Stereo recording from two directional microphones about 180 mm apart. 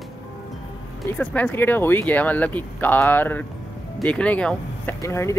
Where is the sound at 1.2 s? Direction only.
10° left (ahead or behind).